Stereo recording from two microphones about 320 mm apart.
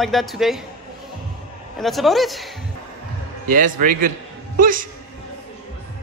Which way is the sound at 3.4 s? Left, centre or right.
Right.